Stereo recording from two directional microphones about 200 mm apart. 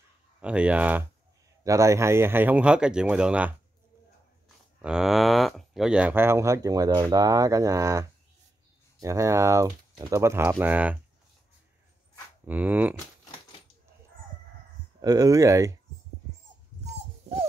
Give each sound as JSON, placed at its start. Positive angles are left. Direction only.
{"t": 0.4, "sound": "speech", "side_deg": -5}
{"t": 4.8, "sound": "speech", "side_deg": -5}
{"t": 12.4, "sound": "speech", "side_deg": -10}
{"t": 15.0, "sound": "speech", "side_deg": -20}